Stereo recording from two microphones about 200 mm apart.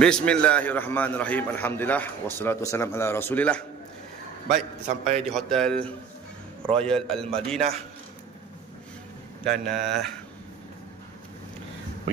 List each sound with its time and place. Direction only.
0.0 s a man's voice: 5° left (ahead or behind)
4.8 s a man's voice: 35° right (ahead or behind)
5.3 s a man's voice: 5° left (ahead or behind)
7.5 s a man's voice: 30° right (ahead or behind)
9.4 s a man's voice: centre (ahead or behind)